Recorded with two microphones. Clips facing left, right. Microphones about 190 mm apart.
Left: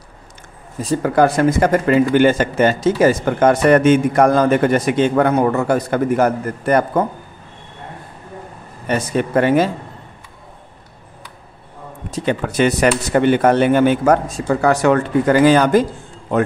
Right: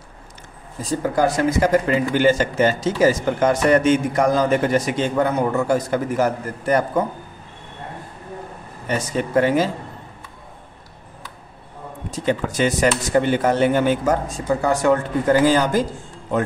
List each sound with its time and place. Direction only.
0.8 s speech: 65° left (ahead or behind)
8.8 s speech: 60° left (ahead or behind)
12.1 s a man's voice: 65° left (ahead or behind)